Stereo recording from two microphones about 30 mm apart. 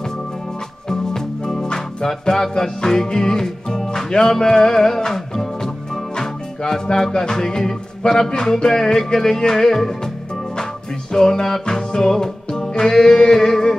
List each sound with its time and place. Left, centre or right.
0.8 s music: centre
11.1 s music: left